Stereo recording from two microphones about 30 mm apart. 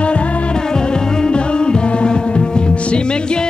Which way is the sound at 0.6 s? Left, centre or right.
Left.